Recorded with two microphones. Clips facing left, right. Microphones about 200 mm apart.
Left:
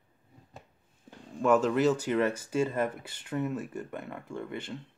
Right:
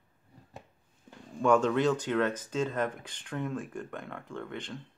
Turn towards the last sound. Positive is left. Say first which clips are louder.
# left 2 dB
turn(degrees=10)  # may be behind; listen again after turning